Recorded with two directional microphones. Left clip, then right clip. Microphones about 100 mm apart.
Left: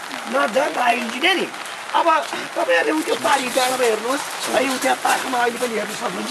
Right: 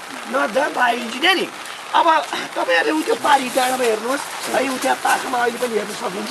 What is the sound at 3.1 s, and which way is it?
Speech, 20° left (ahead or behind).